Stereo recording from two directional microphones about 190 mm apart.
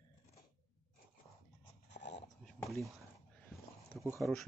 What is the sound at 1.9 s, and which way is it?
Dog, 65° left (ahead or behind).